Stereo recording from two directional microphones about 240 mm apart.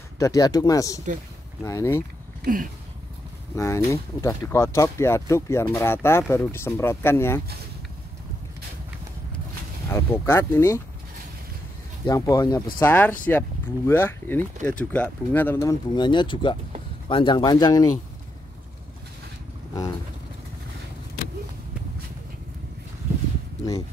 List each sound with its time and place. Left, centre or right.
0.2 s speech: centre
2.4 s a sound: right
3.5 s speech: centre
9.9 s speech: centre
12.1 s speech: centre